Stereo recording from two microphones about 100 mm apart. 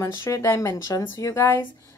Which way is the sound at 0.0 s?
25° left (ahead or behind).